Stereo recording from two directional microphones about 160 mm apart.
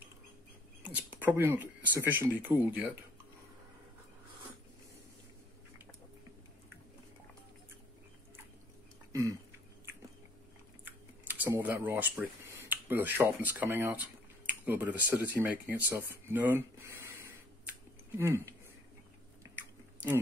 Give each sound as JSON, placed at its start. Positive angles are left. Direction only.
{"t": 0.8, "sound": "speech", "side_deg": -10}
{"t": 10.9, "sound": "speech", "side_deg": -10}
{"t": 18.1, "sound": "speech", "side_deg": -15}